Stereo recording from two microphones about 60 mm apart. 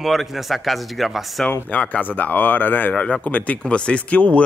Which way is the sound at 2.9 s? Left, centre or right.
Centre.